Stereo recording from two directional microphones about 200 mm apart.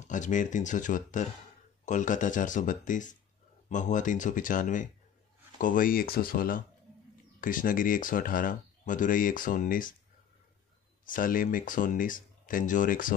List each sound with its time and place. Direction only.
0.0 s speech: 40° left (ahead or behind)
11.1 s speech: 40° left (ahead or behind)